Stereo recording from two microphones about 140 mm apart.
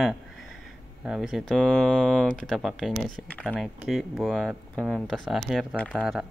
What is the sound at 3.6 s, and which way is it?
Speech, centre (ahead or behind).